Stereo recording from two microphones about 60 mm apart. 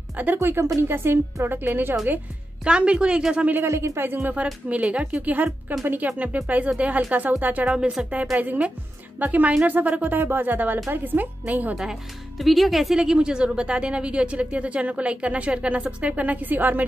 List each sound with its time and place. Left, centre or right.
0.4 s a woman's voice: right
2.6 s a woman's voice: centre
3.6 s speech: right
4.6 s speech: right
7.7 s a woman's voice: centre
8.1 s speech: right
11.7 s speech: centre
12.9 s speech: centre; by 16.8 s right